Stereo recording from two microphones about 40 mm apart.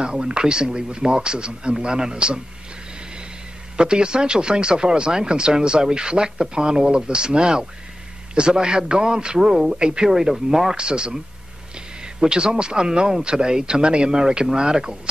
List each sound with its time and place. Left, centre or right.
0.0 s speech: right
3.7 s speech: right
10.0 s speech: centre
10.8 s speech: right